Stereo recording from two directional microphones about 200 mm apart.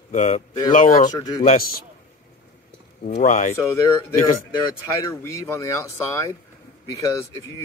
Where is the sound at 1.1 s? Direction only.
20° left (ahead or behind).